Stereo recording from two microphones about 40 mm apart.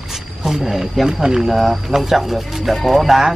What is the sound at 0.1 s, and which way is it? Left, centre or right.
Speech, centre.